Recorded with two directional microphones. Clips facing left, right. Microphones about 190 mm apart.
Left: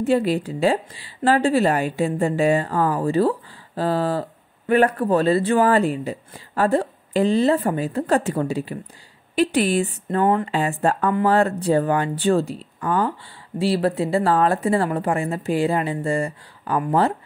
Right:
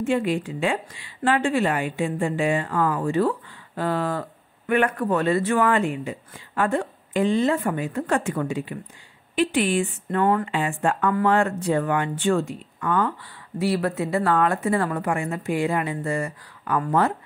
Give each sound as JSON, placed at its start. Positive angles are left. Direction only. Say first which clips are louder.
{"t": 0.0, "sound": "a woman's voice", "louder": "left 3 dB", "side_deg": 35}
{"t": 10.0, "sound": "speech", "louder": "left 2 dB", "side_deg": 25}
{"t": 10.5, "sound": "a woman's voice", "louder": "left 3 dB", "side_deg": 40}